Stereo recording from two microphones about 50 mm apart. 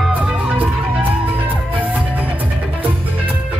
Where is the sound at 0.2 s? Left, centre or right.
Right.